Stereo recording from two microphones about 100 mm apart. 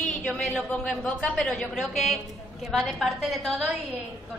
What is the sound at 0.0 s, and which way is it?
A woman's voice, 5° left (ahead or behind).